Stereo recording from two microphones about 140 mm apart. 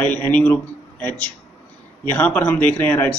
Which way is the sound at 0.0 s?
10° left (ahead or behind).